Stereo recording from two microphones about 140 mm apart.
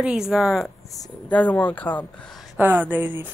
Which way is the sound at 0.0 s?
5° right (ahead or behind).